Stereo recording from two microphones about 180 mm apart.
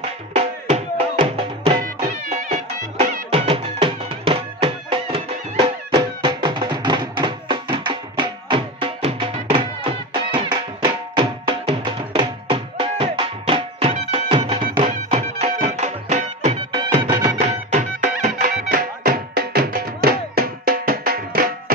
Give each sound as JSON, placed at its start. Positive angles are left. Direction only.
{"t": 0.3, "sound": "music", "side_deg": -35}
{"t": 16.8, "sound": "music", "side_deg": -25}
{"t": 17.4, "sound": "music", "side_deg": -40}